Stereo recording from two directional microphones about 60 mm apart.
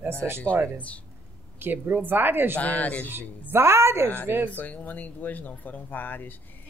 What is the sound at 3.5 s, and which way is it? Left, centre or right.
Speech, right.